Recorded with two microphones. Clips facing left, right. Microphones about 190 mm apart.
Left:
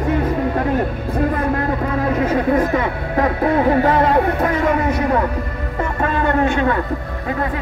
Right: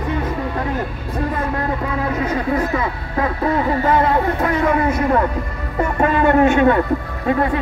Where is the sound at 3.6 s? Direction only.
65° left (ahead or behind).